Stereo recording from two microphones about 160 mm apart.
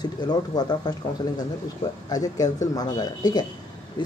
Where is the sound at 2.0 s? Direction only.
25° left (ahead or behind).